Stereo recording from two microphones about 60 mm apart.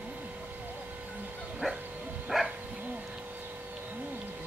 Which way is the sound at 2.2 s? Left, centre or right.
Centre.